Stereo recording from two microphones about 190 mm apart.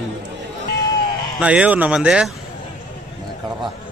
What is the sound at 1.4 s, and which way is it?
Speech, 5° right (ahead or behind).